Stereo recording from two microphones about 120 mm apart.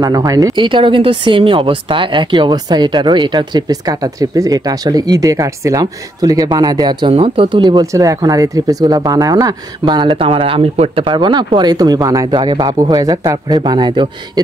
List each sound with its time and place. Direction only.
0.0 s speech: 30° right (ahead or behind)
0.6 s speech: 45° right (ahead or behind)
11.1 s speech: 40° right (ahead or behind)